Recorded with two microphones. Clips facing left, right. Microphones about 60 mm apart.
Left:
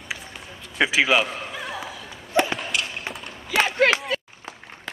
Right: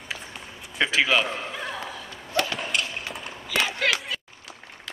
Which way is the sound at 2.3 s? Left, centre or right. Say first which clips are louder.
Left 5 dB; centre.